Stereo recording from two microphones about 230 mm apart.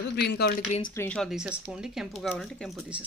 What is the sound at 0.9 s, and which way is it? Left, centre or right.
Speech, centre.